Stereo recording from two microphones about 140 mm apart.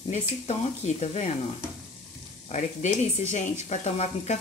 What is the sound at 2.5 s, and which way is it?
Speech, 55° left (ahead or behind).